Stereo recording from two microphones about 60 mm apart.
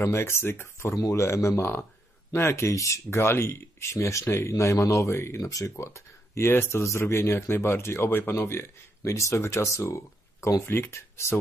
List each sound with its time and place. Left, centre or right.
0.0 s speech: left
0.9 s speech: left
1.6 s speech: left
2.3 s speech: left
9.0 s speech: left
10.6 s speech: left